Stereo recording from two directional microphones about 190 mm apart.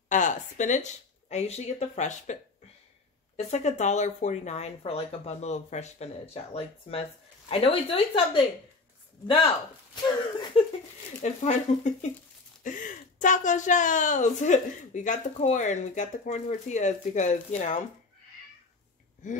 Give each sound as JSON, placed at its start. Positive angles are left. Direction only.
{"t": 0.1, "sound": "a woman's voice", "side_deg": 40}
{"t": 10.6, "sound": "a woman's voice", "side_deg": 30}
{"t": 19.2, "sound": "a woman's voice", "side_deg": 40}